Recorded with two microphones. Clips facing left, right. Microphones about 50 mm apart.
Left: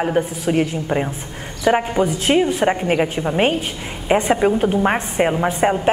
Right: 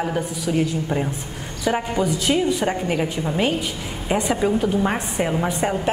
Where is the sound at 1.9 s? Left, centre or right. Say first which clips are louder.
Left 4 dB; left.